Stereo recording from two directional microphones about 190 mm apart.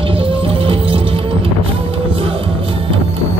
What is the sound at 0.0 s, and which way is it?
Music, 30° right (ahead or behind).